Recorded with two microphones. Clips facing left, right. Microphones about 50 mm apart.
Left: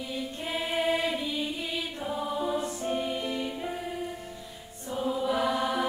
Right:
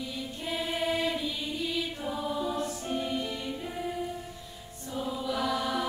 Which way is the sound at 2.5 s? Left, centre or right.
Centre.